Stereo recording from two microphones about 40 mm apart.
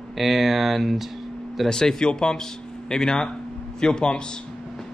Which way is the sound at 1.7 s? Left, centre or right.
Centre.